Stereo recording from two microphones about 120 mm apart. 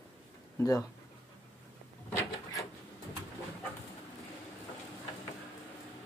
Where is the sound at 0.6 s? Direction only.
25° left (ahead or behind).